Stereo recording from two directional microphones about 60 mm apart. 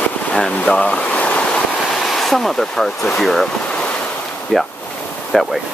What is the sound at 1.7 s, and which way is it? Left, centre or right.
Waves, centre.